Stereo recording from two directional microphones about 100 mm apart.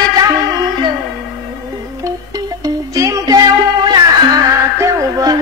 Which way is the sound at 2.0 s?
35° right (ahead or behind).